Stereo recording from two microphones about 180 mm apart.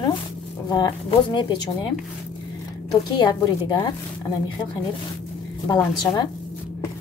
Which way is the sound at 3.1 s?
25° left (ahead or behind).